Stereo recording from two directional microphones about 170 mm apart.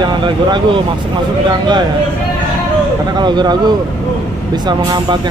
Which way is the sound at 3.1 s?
25° right (ahead or behind).